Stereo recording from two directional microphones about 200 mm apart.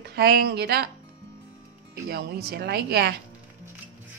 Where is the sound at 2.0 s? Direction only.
55° right (ahead or behind).